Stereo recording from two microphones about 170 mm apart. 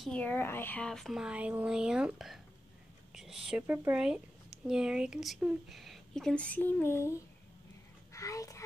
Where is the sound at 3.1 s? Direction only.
5° right (ahead or behind).